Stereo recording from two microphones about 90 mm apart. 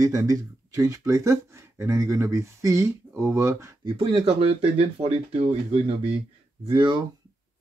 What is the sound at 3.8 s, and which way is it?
Speech, 80° right.